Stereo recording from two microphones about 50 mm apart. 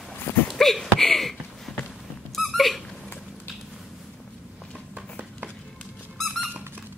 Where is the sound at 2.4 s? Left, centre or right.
Centre.